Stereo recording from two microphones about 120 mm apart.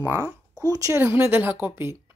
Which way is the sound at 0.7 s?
30° right (ahead or behind).